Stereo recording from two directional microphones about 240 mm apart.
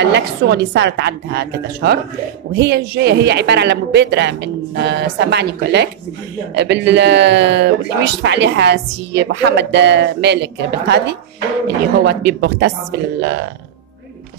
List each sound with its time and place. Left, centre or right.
0.0 s speech: right